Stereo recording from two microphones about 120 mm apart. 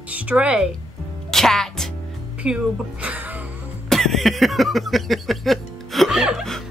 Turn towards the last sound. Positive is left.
turn(degrees=0)  # may be behind; listen again after turning